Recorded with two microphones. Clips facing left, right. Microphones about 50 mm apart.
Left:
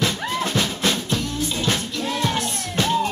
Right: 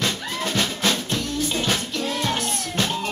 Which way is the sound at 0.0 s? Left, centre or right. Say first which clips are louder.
Left 3 dB; centre.